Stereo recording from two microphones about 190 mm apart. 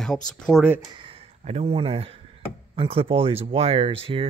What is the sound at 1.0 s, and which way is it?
Speech, 30° right (ahead or behind).